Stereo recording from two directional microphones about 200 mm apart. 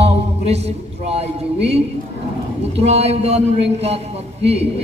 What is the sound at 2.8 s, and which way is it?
A man's voice, 30° right (ahead or behind).